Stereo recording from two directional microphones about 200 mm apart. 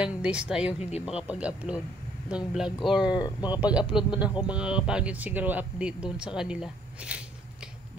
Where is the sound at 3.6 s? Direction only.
5° right (ahead or behind).